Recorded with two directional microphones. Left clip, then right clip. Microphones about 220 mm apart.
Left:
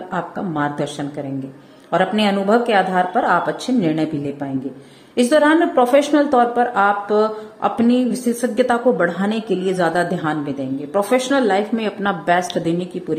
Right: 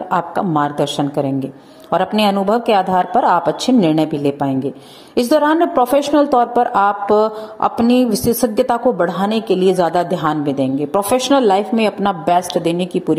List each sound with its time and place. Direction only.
0.1 s a woman's voice: 20° right (ahead or behind)
5.1 s a woman's voice: 20° right (ahead or behind)